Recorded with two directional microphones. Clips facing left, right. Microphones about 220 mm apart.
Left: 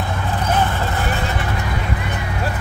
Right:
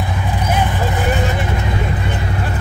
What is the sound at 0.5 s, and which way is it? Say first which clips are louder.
Vehicle: right 1 dB; 15° right (ahead or behind).